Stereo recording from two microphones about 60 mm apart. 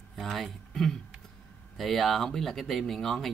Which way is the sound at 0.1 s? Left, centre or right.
Centre.